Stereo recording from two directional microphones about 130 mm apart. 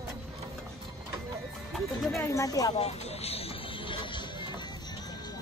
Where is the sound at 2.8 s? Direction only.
55° left (ahead or behind); by 4.6 s 35° left (ahead or behind).